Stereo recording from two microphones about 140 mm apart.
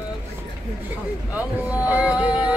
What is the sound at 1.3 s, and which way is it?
Vehicle, 10° right (ahead or behind).